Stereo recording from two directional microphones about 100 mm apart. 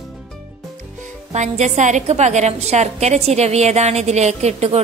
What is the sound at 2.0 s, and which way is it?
A woman's voice, 90° right.